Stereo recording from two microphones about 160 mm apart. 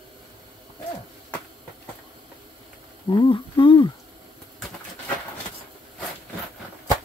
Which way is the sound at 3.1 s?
30° left (ahead or behind).